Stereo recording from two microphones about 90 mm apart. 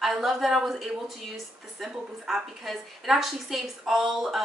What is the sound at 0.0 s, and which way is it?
A woman's voice, 5° right (ahead or behind).